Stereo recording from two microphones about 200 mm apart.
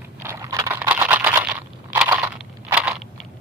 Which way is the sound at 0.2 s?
15° right (ahead or behind).